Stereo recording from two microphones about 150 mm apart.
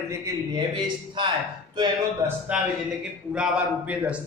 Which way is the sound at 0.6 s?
30° right (ahead or behind).